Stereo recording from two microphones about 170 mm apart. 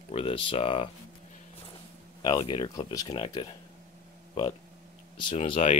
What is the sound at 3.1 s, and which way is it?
Speech, 30° left (ahead or behind).